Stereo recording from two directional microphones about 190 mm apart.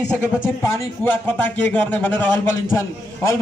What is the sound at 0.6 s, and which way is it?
A man's voice, 15° left (ahead or behind).